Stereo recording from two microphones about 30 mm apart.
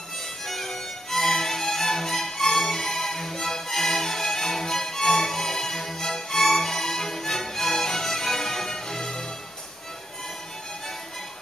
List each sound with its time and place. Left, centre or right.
0.5 s violin: centre